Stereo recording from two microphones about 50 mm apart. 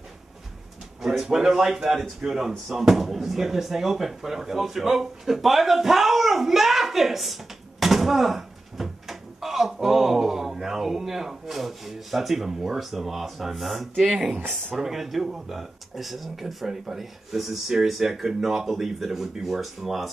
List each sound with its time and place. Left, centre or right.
1.0 s a man's voice: centre